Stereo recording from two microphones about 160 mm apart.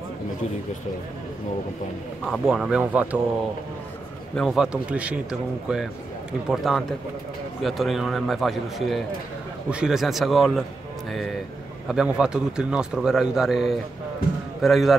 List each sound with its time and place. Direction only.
2.2 s a man's voice: centre (ahead or behind)
4.4 s a man's voice: centre (ahead or behind)
11.9 s a man's voice: 5° right (ahead or behind)